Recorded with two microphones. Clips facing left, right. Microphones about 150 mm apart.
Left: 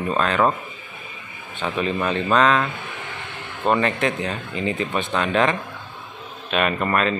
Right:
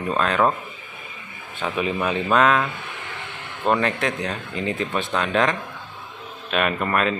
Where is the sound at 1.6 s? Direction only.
5° right (ahead or behind).